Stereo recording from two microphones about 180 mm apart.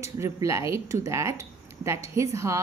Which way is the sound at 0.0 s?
15° right (ahead or behind).